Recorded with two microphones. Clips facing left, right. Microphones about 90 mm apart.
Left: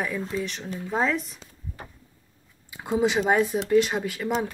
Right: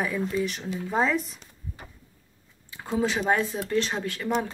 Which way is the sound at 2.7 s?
15° left (ahead or behind).